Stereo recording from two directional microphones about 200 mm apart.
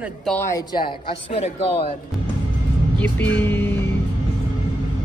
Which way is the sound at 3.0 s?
10° left (ahead or behind).